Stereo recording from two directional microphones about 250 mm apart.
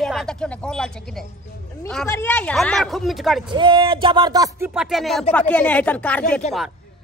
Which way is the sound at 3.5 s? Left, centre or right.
Centre.